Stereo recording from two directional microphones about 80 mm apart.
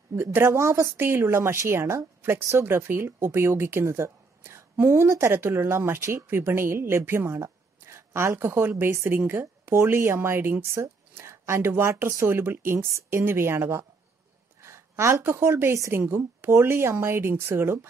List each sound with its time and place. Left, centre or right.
0.1 s a woman's voice: right